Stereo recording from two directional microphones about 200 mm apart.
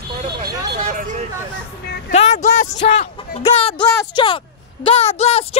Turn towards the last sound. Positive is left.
turn(degrees=30)  # may be behind; listen again after turning